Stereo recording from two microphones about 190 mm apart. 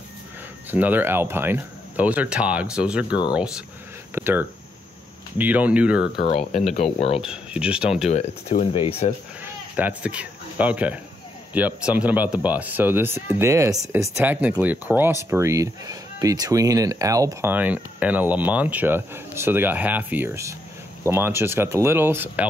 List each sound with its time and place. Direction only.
0.7 s speech: 10° right (ahead or behind)
6.1 s speech: 30° left (ahead or behind)
7.2 s speech: 5° right (ahead or behind)
8.1 s speech: 35° left (ahead or behind)
9.4 s speech: 10° right (ahead or behind)